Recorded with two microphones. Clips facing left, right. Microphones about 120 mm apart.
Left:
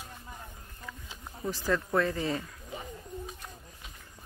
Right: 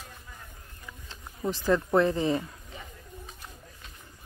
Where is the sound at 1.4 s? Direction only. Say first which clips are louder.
Right 5 dB; 20° right (ahead or behind).